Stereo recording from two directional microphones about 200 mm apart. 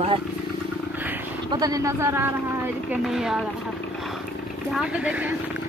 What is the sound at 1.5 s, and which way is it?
Speech, 20° right (ahead or behind).